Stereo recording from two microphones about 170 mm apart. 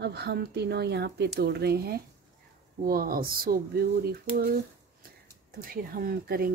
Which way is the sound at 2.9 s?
60° right (ahead or behind).